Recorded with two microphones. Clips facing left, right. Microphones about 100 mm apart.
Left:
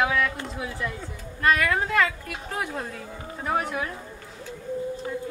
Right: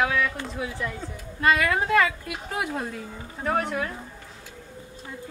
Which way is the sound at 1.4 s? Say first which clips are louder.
Right 1 dB; 20° right (ahead or behind).